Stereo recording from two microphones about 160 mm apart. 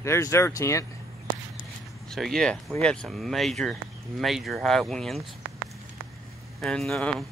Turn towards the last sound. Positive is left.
turn(degrees=0)  # may be behind; listen again after turning